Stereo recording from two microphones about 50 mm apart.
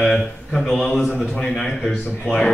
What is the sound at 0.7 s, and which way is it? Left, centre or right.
A man's voice, centre.